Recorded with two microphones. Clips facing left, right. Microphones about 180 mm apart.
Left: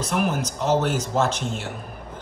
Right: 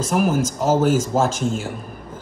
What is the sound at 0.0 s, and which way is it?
Speech, 40° right (ahead or behind).